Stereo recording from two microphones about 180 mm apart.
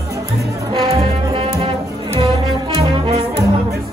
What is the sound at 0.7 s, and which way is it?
Brass instrument, 30° right (ahead or behind).